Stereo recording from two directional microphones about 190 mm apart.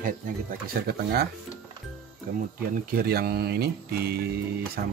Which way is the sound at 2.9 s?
55° right (ahead or behind).